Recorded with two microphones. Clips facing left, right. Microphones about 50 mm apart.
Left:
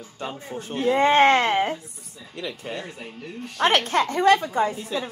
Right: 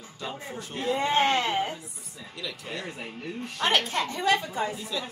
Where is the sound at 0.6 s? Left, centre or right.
Left.